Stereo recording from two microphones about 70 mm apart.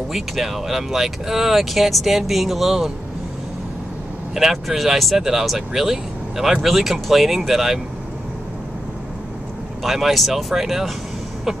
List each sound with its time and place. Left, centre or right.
0.1 s speech: centre
4.4 s speech: centre
9.8 s speech: centre